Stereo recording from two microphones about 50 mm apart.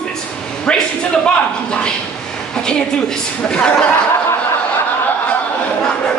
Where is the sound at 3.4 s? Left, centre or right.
Centre.